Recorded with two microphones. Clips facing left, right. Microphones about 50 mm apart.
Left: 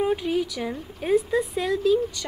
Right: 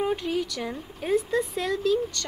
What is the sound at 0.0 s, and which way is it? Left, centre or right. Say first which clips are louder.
Speech: left 3 dB; centre.